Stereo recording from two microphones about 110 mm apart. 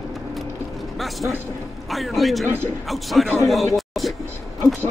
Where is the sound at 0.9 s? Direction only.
Centre (ahead or behind).